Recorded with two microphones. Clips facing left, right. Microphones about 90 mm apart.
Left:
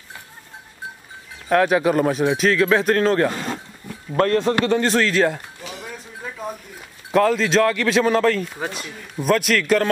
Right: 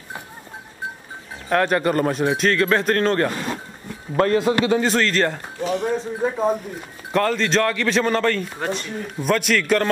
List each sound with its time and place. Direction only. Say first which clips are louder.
1.5 s speech: left 2 dB; centre (ahead or behind)
5.9 s speech: right 11 dB; 35° right (ahead or behind)
7.1 s speech: left 3 dB; centre (ahead or behind)